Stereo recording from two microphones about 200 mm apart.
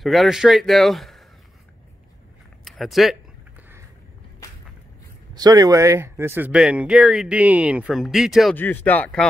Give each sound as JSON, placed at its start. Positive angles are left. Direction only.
{"t": 0.0, "sound": "speech", "side_deg": 0}
{"t": 2.6, "sound": "speech", "side_deg": 0}
{"t": 5.3, "sound": "speech", "side_deg": -20}